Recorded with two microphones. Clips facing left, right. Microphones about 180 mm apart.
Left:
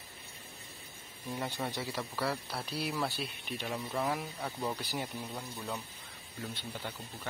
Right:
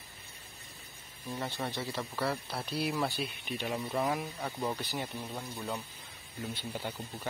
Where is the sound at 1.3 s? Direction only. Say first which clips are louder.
Even; 10° left (ahead or behind).